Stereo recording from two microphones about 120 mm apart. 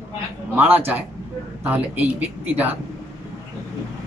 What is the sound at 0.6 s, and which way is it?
Speech, 15° right (ahead or behind).